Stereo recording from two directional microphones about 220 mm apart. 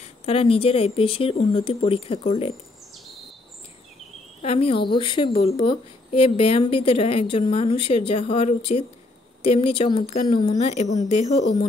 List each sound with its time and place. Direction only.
0.0 s speech: 25° left (ahead or behind)
4.4 s speech: 25° left (ahead or behind)
10.6 s speech: 30° left (ahead or behind)